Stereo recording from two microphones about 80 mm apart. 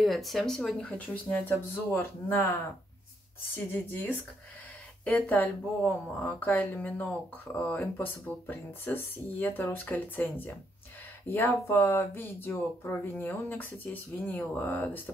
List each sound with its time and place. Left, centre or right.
0.0 s speech: centre
0.8 s speech: centre
3.5 s speech: left